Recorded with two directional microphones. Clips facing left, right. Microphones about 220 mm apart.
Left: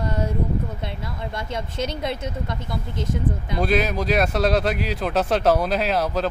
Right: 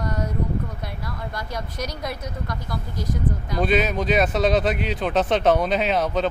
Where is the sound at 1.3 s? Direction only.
25° left (ahead or behind).